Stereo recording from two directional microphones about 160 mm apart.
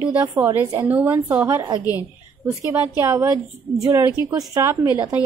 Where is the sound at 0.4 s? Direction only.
15° right (ahead or behind).